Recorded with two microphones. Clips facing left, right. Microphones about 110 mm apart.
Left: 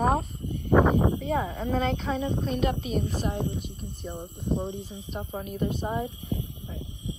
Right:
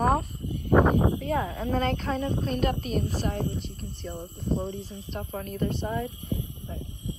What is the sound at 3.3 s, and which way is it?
Speech, 20° left (ahead or behind).